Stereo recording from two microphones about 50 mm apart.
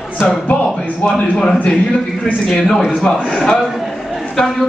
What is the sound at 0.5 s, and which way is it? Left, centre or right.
Speech, left.